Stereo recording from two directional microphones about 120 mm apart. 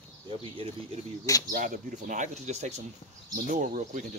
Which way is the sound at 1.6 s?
90° right.